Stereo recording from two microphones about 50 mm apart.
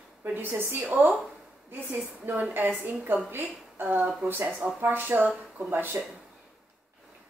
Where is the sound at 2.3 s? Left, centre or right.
Right.